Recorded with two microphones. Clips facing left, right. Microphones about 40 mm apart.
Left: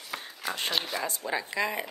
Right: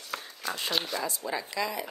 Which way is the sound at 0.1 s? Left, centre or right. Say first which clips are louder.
Even; centre.